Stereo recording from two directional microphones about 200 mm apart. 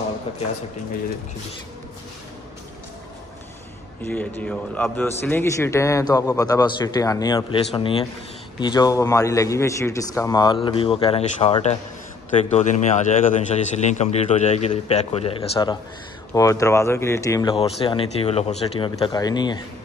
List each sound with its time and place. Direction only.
4.0 s a man's voice: 5° left (ahead or behind)
17.6 s a man's voice: 30° left (ahead or behind)